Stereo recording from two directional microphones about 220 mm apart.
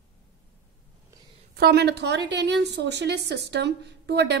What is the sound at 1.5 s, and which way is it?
A woman's voice, 45° right (ahead or behind).